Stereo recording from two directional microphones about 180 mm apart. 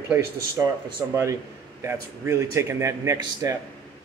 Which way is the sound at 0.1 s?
15° right (ahead or behind).